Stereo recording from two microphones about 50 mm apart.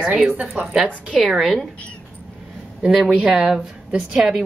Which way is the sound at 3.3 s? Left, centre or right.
Centre.